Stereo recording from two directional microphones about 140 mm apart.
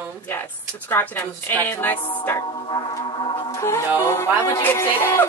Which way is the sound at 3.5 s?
20° left (ahead or behind).